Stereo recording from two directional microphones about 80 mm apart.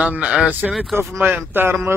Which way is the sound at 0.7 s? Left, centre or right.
Centre.